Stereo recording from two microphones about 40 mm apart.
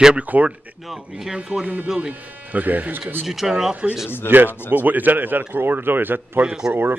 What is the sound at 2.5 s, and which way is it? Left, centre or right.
Speech, right.